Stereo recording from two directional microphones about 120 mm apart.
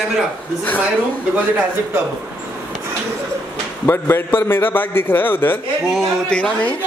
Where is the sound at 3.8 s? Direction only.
20° left (ahead or behind).